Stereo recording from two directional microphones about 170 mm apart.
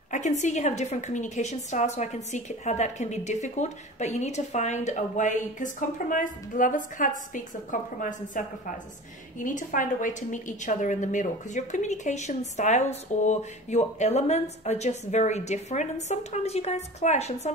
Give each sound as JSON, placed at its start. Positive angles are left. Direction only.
{"t": 0.1, "sound": "a woman's voice", "side_deg": 45}